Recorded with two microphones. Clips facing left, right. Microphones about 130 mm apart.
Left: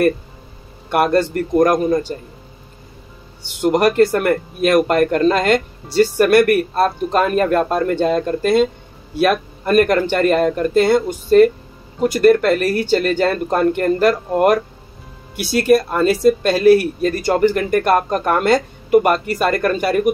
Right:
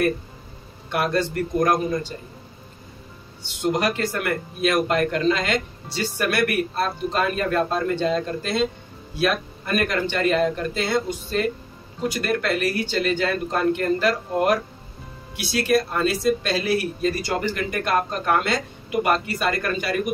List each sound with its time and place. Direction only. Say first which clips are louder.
0.9 s a man's voice: left 7 dB; 55° left (ahead or behind)
3.6 s a man's voice: left 9 dB; 55° left (ahead or behind)